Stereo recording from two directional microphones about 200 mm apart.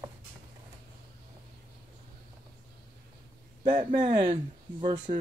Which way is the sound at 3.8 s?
40° right (ahead or behind).